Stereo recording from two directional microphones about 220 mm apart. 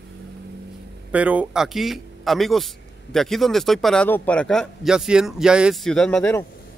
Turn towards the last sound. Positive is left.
turn(degrees=5)  # may be behind; listen again after turning